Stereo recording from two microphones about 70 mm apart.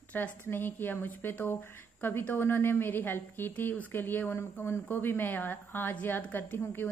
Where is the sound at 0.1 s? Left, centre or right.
Left.